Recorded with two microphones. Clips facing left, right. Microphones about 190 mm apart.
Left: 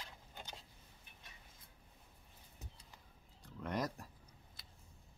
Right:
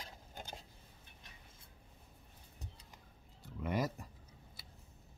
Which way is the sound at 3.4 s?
5° right (ahead or behind).